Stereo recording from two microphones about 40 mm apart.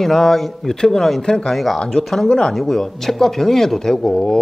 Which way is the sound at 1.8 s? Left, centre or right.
Centre.